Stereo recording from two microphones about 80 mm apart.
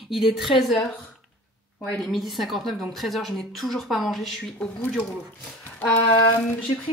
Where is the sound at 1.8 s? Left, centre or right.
Centre.